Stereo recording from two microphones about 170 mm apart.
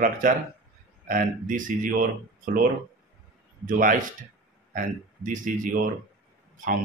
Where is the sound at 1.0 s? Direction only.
50° right (ahead or behind).